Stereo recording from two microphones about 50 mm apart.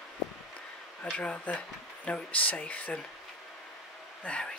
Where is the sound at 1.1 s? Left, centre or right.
Left.